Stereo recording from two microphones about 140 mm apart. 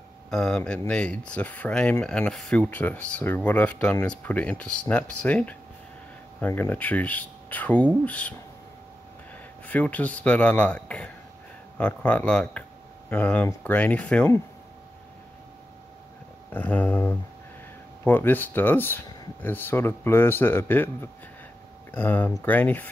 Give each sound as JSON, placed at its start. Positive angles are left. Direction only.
{"t": 0.3, "sound": "speech", "side_deg": 5}
{"t": 9.7, "sound": "speech", "side_deg": 10}
{"t": 16.5, "sound": "speech", "side_deg": 10}